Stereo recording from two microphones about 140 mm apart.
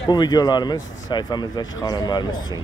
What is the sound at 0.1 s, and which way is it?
Speech, 30° left (ahead or behind).